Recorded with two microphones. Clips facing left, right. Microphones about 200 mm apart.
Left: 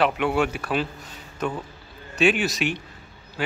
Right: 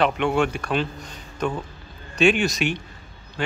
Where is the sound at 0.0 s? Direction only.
5° left (ahead or behind).